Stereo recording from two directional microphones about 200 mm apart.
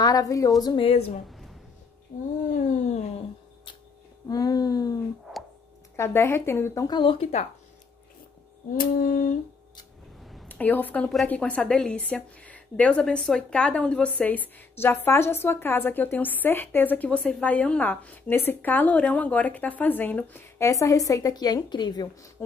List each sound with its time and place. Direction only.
0.0 s a woman's voice: 20° left (ahead or behind)
0.6 s a sound: 25° left (ahead or behind)
2.1 s female singing: 45° left (ahead or behind)
4.3 s a sound: 20° left (ahead or behind)
5.9 s a woman's voice: 10° left (ahead or behind); by 7.4 s 30° left (ahead or behind)
8.7 s female singing: 45° left (ahead or behind)
10.3 s a woman's voice: 5° left (ahead or behind); by 22.1 s 20° left (ahead or behind)